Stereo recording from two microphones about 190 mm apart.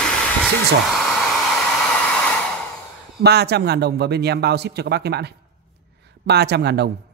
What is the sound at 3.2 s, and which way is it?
Speech, 60° right (ahead or behind).